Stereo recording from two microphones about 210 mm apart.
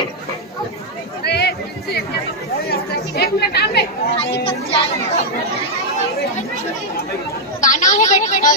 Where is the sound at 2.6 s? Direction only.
50° left (ahead or behind).